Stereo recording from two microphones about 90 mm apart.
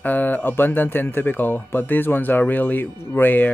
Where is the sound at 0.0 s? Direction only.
20° left (ahead or behind).